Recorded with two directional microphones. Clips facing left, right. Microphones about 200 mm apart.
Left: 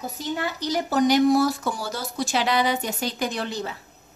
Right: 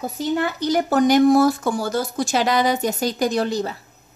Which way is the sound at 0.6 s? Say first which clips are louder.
Right 3 dB; 55° right (ahead or behind).